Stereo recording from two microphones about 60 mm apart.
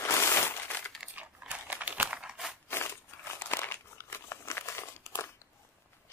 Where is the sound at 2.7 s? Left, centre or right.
Left.